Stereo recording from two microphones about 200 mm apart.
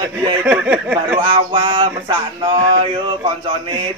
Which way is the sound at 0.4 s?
10° right (ahead or behind).